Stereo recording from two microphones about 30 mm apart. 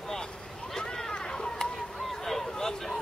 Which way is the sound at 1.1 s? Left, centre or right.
Left.